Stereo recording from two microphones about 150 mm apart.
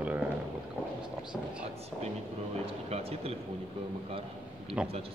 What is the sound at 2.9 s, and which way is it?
Speech, 40° right (ahead or behind).